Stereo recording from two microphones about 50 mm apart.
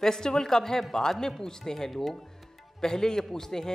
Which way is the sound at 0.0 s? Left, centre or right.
Centre.